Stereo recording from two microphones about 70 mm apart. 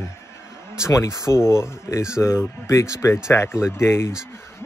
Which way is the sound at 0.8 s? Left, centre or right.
Left.